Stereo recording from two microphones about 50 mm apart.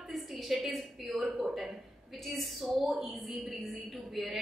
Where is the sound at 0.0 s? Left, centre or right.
Centre.